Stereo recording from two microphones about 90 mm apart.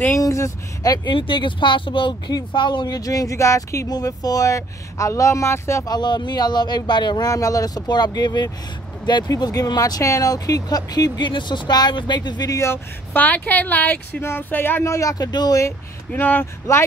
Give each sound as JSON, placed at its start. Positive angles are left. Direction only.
{"t": 0.2, "sound": "speech", "side_deg": 40}
{"t": 1.1, "sound": "speech", "side_deg": 65}
{"t": 5.9, "sound": "speech", "side_deg": 50}
{"t": 12.5, "sound": "speech", "side_deg": 30}
{"t": 16.1, "sound": "speech", "side_deg": 20}